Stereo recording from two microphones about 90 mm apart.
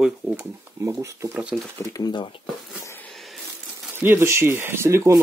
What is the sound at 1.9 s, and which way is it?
Speech, 45° left (ahead or behind).